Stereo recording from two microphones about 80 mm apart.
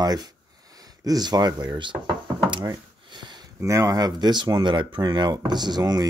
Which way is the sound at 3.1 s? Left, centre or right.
Right.